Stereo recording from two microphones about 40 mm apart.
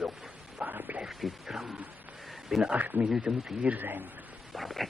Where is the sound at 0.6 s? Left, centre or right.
Right.